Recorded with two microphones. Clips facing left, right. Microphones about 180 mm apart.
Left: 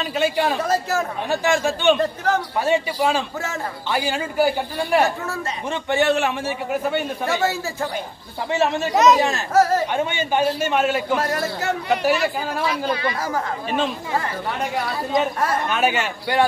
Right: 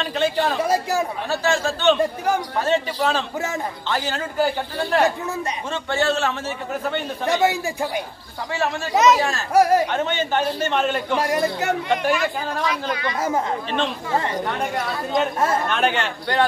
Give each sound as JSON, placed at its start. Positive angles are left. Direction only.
{"t": 0.0, "sound": "a man's voice", "side_deg": 10}
{"t": 0.6, "sound": "speech", "side_deg": -10}
{"t": 1.3, "sound": "a man's voice", "side_deg": 15}
{"t": 2.0, "sound": "speech", "side_deg": -10}
{"t": 2.6, "sound": "a man's voice", "side_deg": 10}
{"t": 7.2, "sound": "speech", "side_deg": -15}
{"t": 8.5, "sound": "speech", "side_deg": 20}
{"t": 8.9, "sound": "speech", "side_deg": 0}
{"t": 9.5, "sound": "speech", "side_deg": -15}
{"t": 9.9, "sound": "a man's voice", "side_deg": 10}
{"t": 11.1, "sound": "speech", "side_deg": -15}
{"t": 11.9, "sound": "a man's voice", "side_deg": 5}
{"t": 14.1, "sound": "speech", "side_deg": -20}
{"t": 14.6, "sound": "a man's voice", "side_deg": 0}